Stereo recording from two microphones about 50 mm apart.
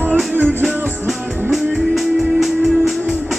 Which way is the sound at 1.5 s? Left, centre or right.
Centre.